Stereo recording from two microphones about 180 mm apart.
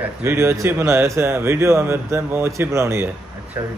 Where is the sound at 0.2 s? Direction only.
15° right (ahead or behind).